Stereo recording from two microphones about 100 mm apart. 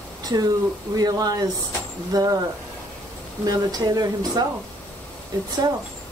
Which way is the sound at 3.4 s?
40° right (ahead or behind).